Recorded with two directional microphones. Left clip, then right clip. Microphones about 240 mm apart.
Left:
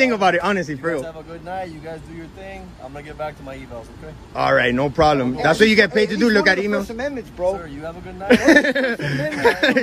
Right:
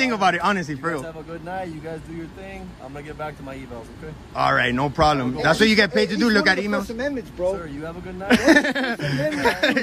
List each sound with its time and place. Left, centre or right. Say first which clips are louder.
0.0 s a man's voice: left 3 dB; centre
4.4 s a man's voice: left 3 dB; centre
7.0 s speech: left 1 dB; left
7.8 s a man's voice: left 2 dB; centre